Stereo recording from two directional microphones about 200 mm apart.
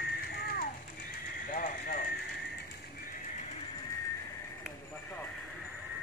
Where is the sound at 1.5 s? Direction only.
45° left (ahead or behind).